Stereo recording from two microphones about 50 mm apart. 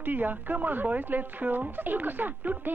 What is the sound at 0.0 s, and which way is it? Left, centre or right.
Speech, right.